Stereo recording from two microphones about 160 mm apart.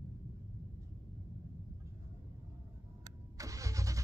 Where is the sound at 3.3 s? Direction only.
20° right (ahead or behind).